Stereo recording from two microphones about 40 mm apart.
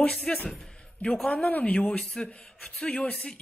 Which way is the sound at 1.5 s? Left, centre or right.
Left.